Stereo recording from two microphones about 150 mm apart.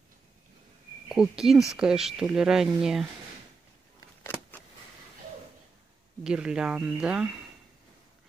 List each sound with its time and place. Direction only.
1.0 s speech: 5° right (ahead or behind)
4.2 s a sound: 10° left (ahead or behind)
6.2 s speech: 5° right (ahead or behind)